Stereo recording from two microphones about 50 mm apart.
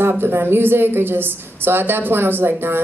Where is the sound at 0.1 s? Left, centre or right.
Right.